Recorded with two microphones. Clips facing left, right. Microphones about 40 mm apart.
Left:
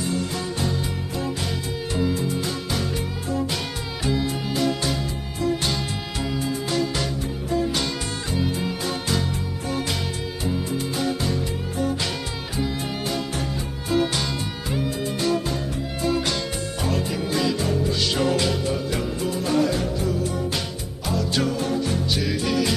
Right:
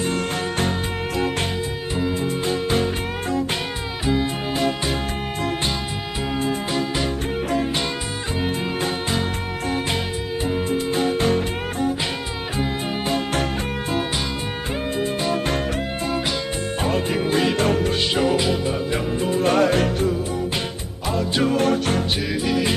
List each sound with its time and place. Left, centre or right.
11.0 s music: right
16.8 s music: right
17.6 s music: right
18.1 s music: centre
19.4 s music: right
21.1 s music: right
21.5 s music: right
22.4 s music: centre